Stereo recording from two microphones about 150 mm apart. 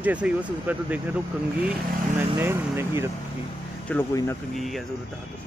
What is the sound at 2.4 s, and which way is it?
Speech, 15° right (ahead or behind).